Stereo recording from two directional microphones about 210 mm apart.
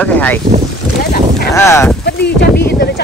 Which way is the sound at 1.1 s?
50° left (ahead or behind).